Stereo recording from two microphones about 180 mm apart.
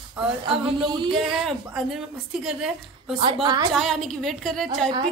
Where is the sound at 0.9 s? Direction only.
25° right (ahead or behind).